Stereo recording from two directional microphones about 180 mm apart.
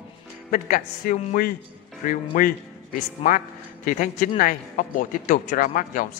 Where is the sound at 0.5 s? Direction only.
50° left (ahead or behind).